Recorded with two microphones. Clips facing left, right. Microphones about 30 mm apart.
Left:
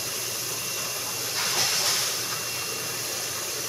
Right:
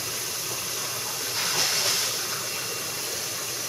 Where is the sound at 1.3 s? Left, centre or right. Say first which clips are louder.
Even; centre.